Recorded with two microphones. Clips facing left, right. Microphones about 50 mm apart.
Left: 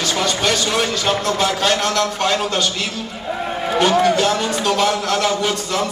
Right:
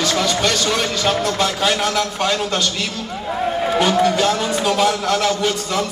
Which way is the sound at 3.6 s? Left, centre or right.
Centre.